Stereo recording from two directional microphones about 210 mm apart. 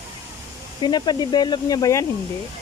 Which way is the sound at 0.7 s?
20° left (ahead or behind).